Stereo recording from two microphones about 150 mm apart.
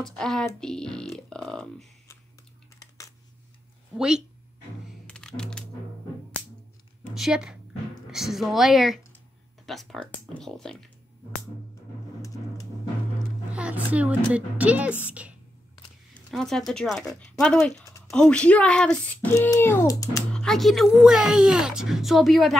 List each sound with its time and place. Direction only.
0.0 s a woman's voice: 5° left (ahead or behind)
3.9 s speech: 5° right (ahead or behind)
5.0 s music: 5° left (ahead or behind)
7.2 s a woman's voice: 5° right (ahead or behind)
13.5 s a woman's voice: 10° right (ahead or behind)
16.3 s a woman's voice: 5° left (ahead or behind)
17.8 s a sound: 20° left (ahead or behind)
18.1 s speech: 5° left (ahead or behind); by 20.2 s 20° left (ahead or behind)
20.3 s a woman's voice: centre (ahead or behind)